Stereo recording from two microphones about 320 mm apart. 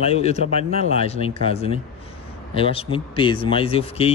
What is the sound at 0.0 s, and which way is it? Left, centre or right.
A man's voice, centre.